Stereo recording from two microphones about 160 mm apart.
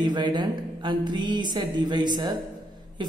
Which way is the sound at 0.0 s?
30° right (ahead or behind).